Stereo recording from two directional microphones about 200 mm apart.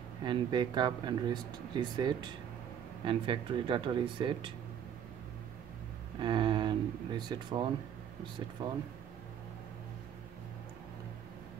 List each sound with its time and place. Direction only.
0.2 s speech: 20° right (ahead or behind)
6.1 s a sound: 25° right (ahead or behind)
7.2 s speech: 20° right (ahead or behind)